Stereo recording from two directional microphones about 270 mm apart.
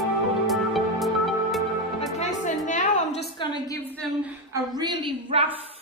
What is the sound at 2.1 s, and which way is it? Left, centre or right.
Music, left.